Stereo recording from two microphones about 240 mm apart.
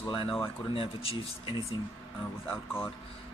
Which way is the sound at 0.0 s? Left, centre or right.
Centre.